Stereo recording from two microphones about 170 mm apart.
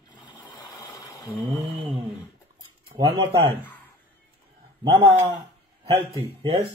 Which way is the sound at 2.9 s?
25° right (ahead or behind).